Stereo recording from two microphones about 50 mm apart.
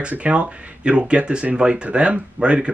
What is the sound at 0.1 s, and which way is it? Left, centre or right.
Speech, right.